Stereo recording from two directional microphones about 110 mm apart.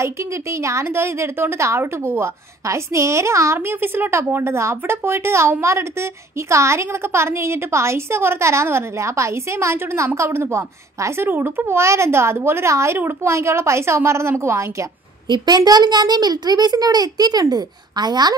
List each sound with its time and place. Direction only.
0.0 s a woman's voice: 25° right (ahead or behind)
15.2 s a child's voice: 40° right (ahead or behind)